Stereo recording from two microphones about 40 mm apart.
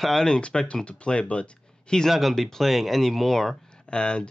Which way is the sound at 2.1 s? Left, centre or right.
Centre.